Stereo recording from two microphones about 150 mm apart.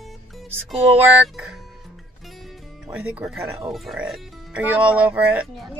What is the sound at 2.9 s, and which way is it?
Speech, 10° right (ahead or behind).